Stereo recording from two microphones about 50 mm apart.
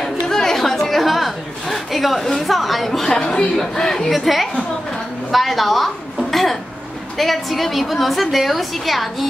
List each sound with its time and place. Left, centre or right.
0.0 s chatter: centre
3.1 s speech: centre
4.1 s a woman's voice: centre
6.3 s cough: centre
7.2 s a woman's voice: centre